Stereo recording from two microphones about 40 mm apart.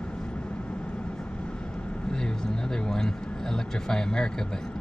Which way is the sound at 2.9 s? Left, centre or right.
Centre.